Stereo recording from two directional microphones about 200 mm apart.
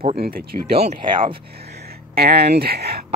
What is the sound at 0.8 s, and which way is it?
Speech, 30° right (ahead or behind).